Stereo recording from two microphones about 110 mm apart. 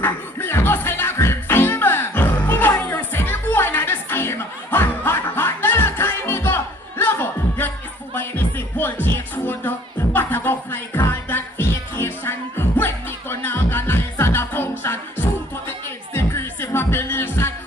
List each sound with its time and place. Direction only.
0.0 s music: 20° left (ahead or behind)